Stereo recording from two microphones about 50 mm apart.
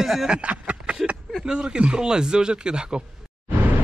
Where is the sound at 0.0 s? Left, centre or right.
Centre.